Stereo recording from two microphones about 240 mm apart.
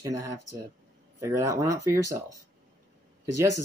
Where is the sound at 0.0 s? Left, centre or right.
Centre.